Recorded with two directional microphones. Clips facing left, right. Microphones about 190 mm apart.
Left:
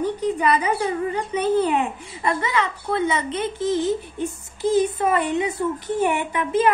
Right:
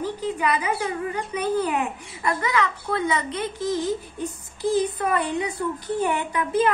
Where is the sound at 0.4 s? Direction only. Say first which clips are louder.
Left 2 dB; 35° left (ahead or behind).